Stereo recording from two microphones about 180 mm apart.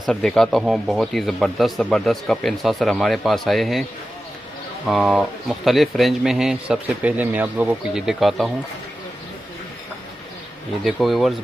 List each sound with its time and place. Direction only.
0.0 s a man's voice: centre (ahead or behind)
4.8 s a man's voice: centre (ahead or behind)
10.8 s a man's voice: centre (ahead or behind)